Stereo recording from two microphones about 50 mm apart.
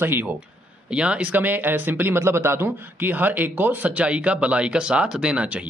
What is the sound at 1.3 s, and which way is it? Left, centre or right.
Speech, right.